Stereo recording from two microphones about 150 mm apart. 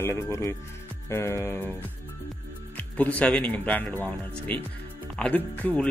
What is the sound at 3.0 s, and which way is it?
Speech, 10° left (ahead or behind).